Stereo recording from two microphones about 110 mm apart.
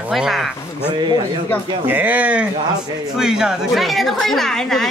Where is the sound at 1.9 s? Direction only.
15° right (ahead or behind); by 4.9 s 5° left (ahead or behind).